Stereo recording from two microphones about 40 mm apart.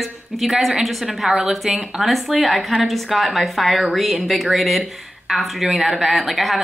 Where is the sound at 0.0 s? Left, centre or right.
Centre.